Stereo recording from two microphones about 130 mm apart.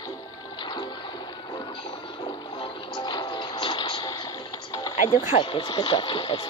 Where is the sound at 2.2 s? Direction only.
35° left (ahead or behind).